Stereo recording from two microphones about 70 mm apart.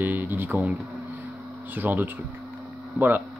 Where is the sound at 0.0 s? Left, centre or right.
Right.